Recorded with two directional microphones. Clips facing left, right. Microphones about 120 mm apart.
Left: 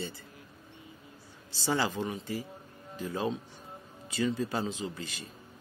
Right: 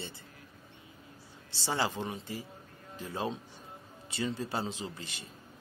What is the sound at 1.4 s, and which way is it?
Speech, 25° right (ahead or behind).